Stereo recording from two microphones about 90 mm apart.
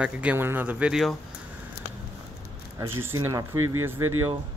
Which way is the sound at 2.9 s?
30° right (ahead or behind).